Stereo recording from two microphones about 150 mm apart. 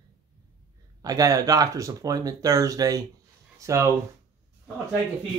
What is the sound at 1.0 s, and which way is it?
Speech, 25° right (ahead or behind).